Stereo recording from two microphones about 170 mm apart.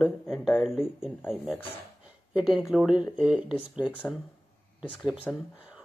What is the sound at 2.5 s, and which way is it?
Speech, centre (ahead or behind).